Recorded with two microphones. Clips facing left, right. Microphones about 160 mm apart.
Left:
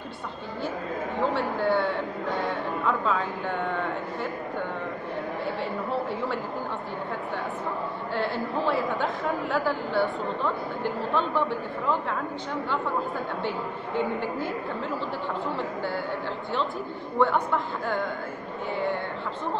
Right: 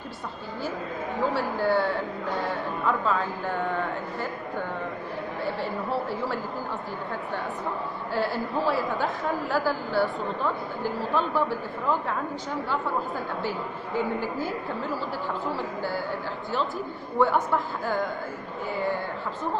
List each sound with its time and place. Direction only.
1.3 s a woman's voice: 5° right (ahead or behind)
5.4 s a woman's voice: centre (ahead or behind)
8.1 s a woman's voice: 5° right (ahead or behind)
13.4 s a woman's voice: 5° right (ahead or behind)
15.5 s a woman's voice: 5° right (ahead or behind)
17.2 s a woman's voice: 5° right (ahead or behind)